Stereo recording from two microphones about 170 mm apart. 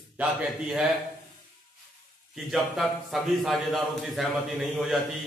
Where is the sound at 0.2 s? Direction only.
5° right (ahead or behind).